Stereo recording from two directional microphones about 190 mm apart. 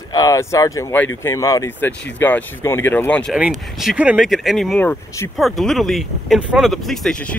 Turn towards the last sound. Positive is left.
turn(degrees=5)  # may be behind; listen again after turning